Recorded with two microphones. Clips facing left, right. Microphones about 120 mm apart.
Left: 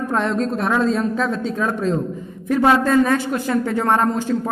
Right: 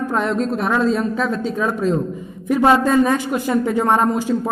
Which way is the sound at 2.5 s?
15° right (ahead or behind).